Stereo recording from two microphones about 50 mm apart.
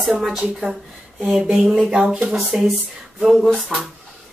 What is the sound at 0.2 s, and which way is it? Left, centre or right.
Hands, centre.